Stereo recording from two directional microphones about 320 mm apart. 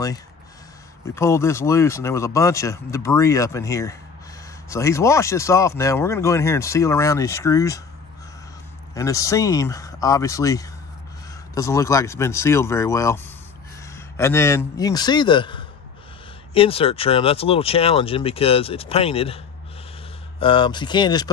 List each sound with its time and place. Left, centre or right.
1.1 s speech: centre
8.9 s speech: centre